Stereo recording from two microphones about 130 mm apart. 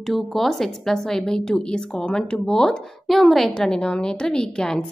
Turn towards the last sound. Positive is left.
turn(degrees=5)  # may be behind; listen again after turning